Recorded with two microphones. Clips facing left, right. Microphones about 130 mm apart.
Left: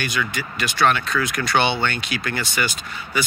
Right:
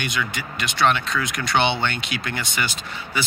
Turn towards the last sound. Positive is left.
turn(degrees=-25)  # may be behind; listen again after turning